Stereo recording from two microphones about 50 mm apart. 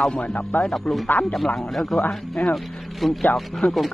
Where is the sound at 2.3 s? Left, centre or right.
Left.